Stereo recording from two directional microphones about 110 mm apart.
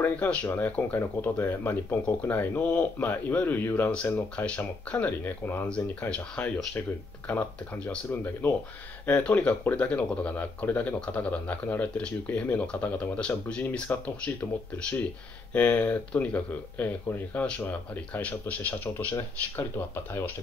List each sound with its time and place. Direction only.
0.0 s speech: 15° left (ahead or behind)